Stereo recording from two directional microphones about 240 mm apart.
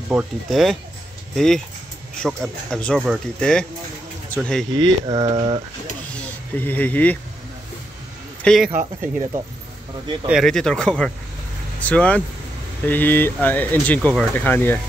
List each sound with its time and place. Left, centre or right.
0.1 s speech: centre
5.0 s speech: centre
6.6 s speech: centre
8.5 s speech: centre
8.7 s speech: right
10.2 s speech: centre